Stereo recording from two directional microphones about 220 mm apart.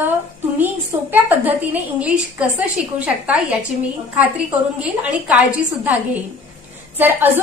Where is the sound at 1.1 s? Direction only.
10° right (ahead or behind).